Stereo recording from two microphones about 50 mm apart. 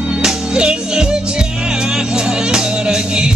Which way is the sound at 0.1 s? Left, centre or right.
Centre.